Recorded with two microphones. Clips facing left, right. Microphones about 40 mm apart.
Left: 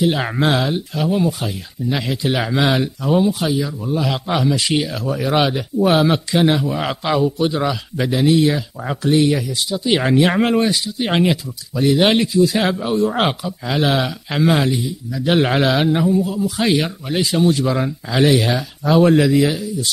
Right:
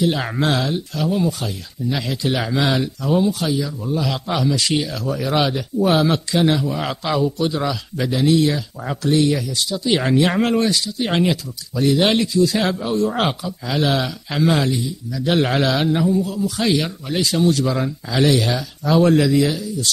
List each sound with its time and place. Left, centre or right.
0.0 s a man's voice: centre